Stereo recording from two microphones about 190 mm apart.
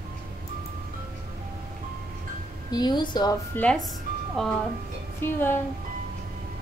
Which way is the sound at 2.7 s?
20° left (ahead or behind).